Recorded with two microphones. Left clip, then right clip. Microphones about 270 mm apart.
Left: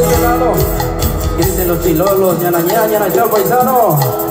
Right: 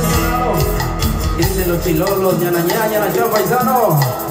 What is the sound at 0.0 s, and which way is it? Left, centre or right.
Music, centre.